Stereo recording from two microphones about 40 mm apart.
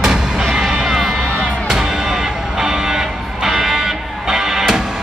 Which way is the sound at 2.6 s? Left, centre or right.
Centre.